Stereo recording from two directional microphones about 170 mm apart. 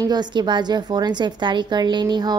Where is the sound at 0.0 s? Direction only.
25° right (ahead or behind).